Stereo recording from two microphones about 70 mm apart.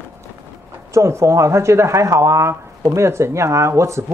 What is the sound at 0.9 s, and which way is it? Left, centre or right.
Speech, right.